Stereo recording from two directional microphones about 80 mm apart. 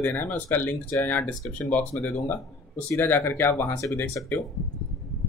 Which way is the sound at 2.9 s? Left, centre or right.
Left.